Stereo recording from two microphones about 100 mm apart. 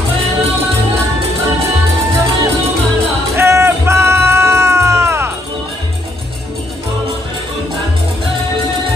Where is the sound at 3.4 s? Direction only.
30° right (ahead or behind).